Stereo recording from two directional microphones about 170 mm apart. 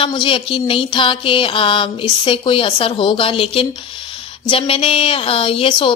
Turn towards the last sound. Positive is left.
turn(degrees=30)  # may be behind; listen again after turning